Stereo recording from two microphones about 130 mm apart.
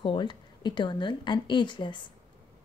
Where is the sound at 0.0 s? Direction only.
40° left (ahead or behind).